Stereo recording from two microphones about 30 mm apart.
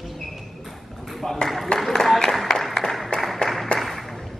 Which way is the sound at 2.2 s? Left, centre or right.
Centre.